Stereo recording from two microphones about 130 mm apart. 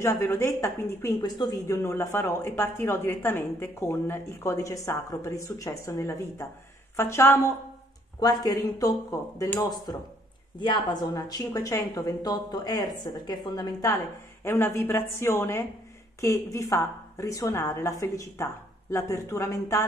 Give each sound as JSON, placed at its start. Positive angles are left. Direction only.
{"t": 0.0, "sound": "speech", "side_deg": 20}